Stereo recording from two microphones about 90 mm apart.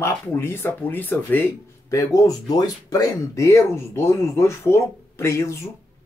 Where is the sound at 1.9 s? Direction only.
40° left (ahead or behind).